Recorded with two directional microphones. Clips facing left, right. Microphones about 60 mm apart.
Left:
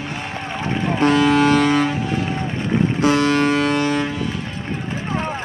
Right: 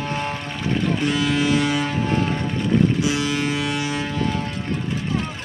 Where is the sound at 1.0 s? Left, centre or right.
Left.